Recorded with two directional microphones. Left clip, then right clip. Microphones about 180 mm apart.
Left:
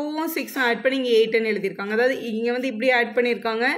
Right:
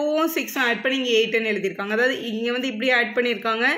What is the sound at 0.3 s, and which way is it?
Speech, 30° right (ahead or behind).